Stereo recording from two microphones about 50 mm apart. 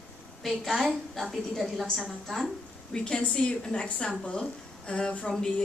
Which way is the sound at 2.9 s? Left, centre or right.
Centre.